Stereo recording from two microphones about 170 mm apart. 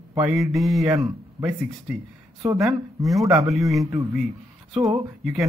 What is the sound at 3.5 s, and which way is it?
Speech, centre (ahead or behind).